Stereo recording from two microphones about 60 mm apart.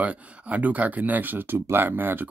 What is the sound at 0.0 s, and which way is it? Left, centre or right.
Speech, right.